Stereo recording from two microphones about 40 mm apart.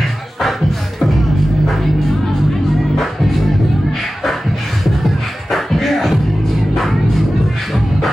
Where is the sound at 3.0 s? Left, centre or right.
Centre.